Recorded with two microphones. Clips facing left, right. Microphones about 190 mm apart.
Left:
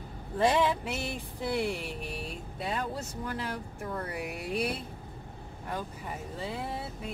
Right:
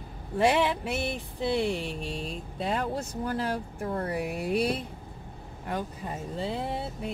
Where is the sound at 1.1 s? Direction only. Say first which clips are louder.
Right 4 dB; 25° right (ahead or behind).